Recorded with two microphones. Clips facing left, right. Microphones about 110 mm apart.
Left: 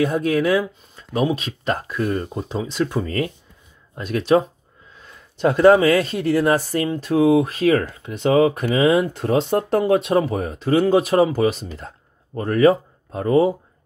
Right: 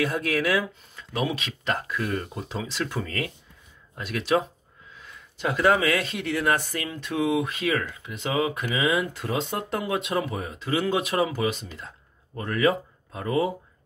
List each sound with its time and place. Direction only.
0.0 s speech: 25° left (ahead or behind)
5.4 s speech: 40° left (ahead or behind)